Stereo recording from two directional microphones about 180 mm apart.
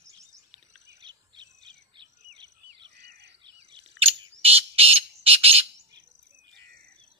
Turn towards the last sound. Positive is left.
turn(degrees=-35)  # may be behind; listen again after turning